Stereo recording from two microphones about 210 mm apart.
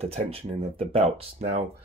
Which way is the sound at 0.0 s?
30° right (ahead or behind).